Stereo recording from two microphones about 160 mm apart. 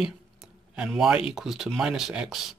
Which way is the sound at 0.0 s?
5° right (ahead or behind).